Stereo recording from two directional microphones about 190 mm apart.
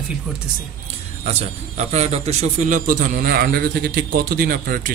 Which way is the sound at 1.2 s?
35° right (ahead or behind).